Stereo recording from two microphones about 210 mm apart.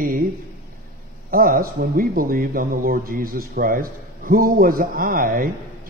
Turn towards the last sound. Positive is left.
turn(degrees=-45)  # may be behind; listen again after turning